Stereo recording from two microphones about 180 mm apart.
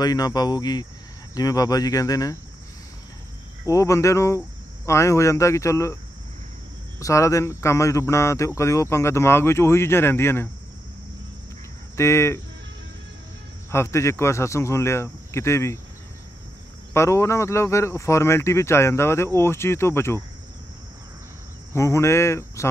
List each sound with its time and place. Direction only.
0.0 s speech: 20° left (ahead or behind)
3.6 s speech: 15° left (ahead or behind)
7.0 s speech: 15° left (ahead or behind)
12.0 s speech: 15° left (ahead or behind)
13.7 s speech: 15° left (ahead or behind)
16.9 s speech: 15° left (ahead or behind)
21.7 s speech: 15° left (ahead or behind)